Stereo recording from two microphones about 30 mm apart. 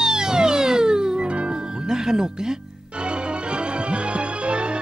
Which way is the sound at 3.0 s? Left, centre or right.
Right.